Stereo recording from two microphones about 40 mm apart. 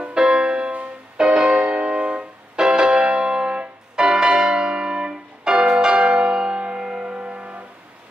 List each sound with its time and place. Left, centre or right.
0.0 s music: centre
7.2 s music: right